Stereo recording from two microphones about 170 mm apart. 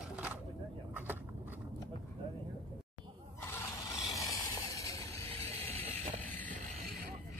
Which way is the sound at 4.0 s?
20° left (ahead or behind).